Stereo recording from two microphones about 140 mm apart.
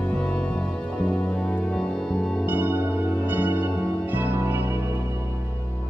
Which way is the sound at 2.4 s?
15° right (ahead or behind).